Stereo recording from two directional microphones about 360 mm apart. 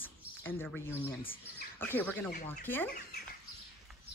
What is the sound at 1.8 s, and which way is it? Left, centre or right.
Speech, centre.